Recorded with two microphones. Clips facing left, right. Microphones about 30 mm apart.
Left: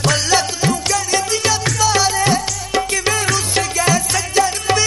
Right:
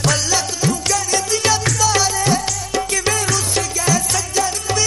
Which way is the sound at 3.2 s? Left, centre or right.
Left.